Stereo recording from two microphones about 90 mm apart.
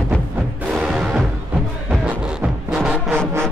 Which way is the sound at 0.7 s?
10° right (ahead or behind).